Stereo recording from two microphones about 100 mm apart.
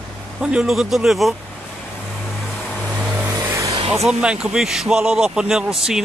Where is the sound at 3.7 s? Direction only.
80° right.